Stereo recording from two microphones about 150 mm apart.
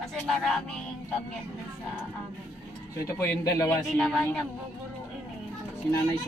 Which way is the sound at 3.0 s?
20° left (ahead or behind).